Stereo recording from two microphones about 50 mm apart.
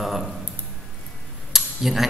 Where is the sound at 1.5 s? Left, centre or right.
Centre.